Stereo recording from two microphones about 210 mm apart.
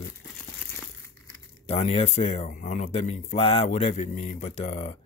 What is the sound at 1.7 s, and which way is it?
Speech, 30° left (ahead or behind).